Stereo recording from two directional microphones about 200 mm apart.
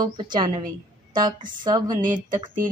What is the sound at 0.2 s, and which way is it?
Speech, 20° right (ahead or behind).